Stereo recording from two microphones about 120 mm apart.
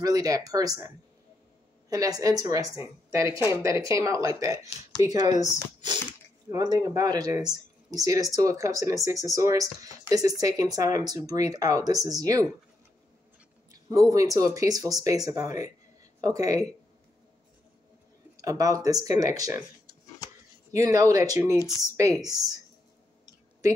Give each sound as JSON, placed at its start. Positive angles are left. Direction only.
{"t": 0.0, "sound": "speech", "side_deg": -30}
{"t": 6.5, "sound": "speech", "side_deg": -35}
{"t": 13.7, "sound": "speech", "side_deg": -30}
{"t": 18.3, "sound": "speech", "side_deg": -30}
{"t": 20.7, "sound": "speech", "side_deg": -30}
{"t": 21.5, "sound": "speech", "side_deg": 30}
{"t": 21.9, "sound": "speech", "side_deg": -30}